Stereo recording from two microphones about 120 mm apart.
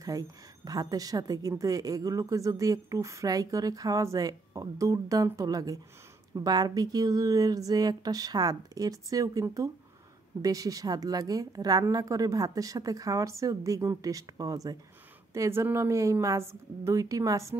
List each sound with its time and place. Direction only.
0.1 s a woman's voice: 30° right (ahead or behind)